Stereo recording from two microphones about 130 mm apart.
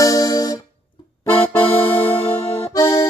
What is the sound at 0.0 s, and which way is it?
Music, 30° left (ahead or behind).